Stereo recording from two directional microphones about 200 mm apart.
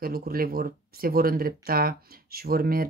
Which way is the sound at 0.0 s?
50° right (ahead or behind).